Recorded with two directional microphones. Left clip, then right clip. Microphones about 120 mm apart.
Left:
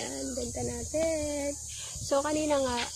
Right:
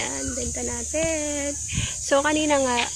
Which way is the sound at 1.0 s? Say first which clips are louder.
Right 3 dB; 25° left (ahead or behind).